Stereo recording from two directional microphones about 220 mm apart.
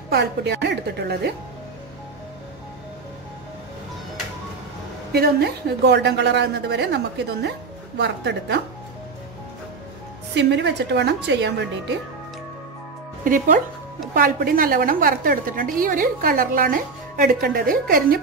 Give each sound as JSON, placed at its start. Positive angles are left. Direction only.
{"t": 0.1, "sound": "a woman's voice", "side_deg": -50}
{"t": 5.1, "sound": "a woman's voice", "side_deg": -45}
{"t": 8.0, "sound": "a woman's voice", "side_deg": -50}
{"t": 10.3, "sound": "a woman's voice", "side_deg": -50}
{"t": 13.2, "sound": "a woman's voice", "side_deg": -35}